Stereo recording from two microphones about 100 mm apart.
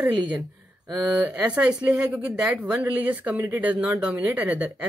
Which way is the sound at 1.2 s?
15° right (ahead or behind).